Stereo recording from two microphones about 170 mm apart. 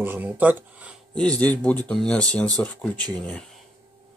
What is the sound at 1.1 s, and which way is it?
Speech, 5° left (ahead or behind).